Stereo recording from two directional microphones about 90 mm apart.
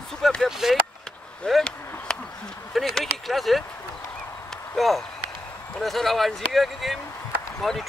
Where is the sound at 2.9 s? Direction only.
Centre (ahead or behind).